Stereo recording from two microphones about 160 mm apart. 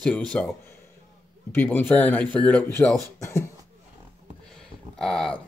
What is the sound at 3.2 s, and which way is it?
Speech, 20° left (ahead or behind).